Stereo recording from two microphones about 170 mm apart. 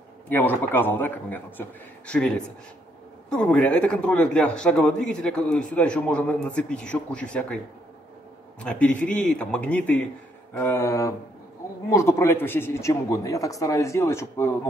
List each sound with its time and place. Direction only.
0.3 s a man's voice: 10° left (ahead or behind)